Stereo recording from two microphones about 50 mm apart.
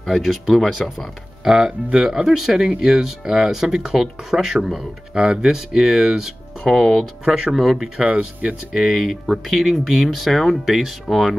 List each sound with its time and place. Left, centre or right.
0.0 s speech: centre
6.7 s speech: centre
7.2 s speech: centre
7.8 s speech: right
8.7 s speech: centre